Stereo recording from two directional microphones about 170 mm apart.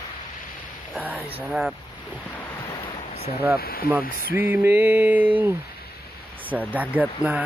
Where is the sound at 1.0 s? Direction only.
5° right (ahead or behind).